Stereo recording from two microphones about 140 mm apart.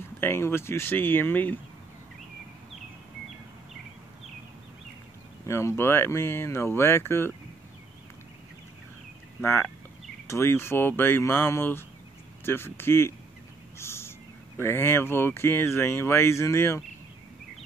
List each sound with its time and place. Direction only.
0.2 s speech: 15° left (ahead or behind)
5.5 s speech: 20° left (ahead or behind)
9.4 s speech: 15° left (ahead or behind)
13.7 s bird: 20° left (ahead or behind)
14.6 s speech: 15° left (ahead or behind)